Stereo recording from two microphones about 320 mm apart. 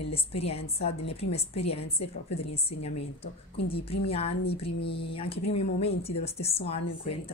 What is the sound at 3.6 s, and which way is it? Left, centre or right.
A woman's voice, centre.